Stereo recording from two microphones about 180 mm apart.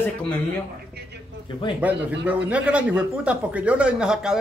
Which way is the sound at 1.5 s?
25° left (ahead or behind).